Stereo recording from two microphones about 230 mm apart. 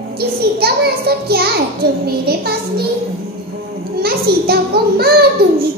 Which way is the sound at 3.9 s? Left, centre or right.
Right.